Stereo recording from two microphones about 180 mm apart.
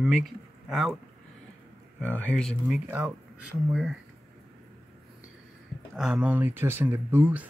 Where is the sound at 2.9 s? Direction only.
15° right (ahead or behind).